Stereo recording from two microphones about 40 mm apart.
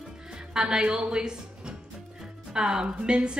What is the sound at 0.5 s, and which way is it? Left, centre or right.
A woman's voice, right.